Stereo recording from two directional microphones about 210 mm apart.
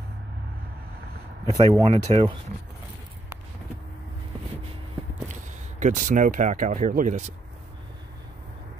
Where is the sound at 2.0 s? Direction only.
30° right (ahead or behind).